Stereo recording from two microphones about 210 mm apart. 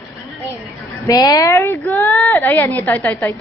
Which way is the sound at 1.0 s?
15° left (ahead or behind).